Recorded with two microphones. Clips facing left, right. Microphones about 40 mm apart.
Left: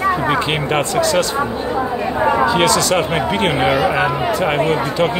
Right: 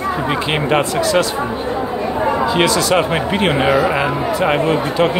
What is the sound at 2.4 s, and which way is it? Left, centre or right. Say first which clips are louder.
Speech: left 1 dB; centre.